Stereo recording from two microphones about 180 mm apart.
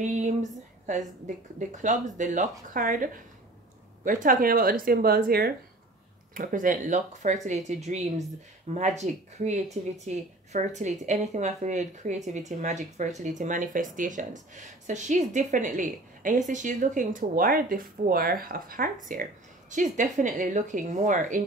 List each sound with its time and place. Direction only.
0.0 s speech: 40° right (ahead or behind)